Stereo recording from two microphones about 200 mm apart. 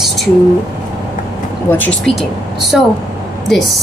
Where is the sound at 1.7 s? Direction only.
5° left (ahead or behind).